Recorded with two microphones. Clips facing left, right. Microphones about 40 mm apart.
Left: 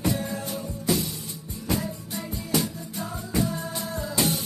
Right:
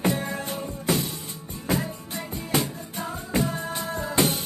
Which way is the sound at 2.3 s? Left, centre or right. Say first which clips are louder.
Right 1 dB; right.